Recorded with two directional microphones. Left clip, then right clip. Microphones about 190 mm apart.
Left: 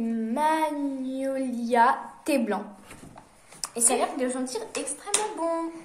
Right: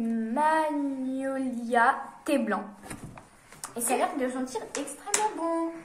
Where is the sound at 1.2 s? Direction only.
30° left (ahead or behind).